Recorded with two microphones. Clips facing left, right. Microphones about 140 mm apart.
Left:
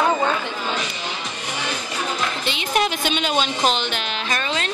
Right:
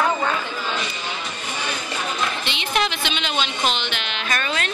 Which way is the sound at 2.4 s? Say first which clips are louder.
Left 5 dB; 40° left (ahead or behind).